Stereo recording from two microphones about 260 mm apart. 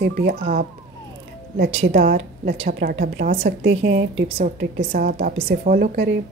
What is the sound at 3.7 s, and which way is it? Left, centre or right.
Speech, right.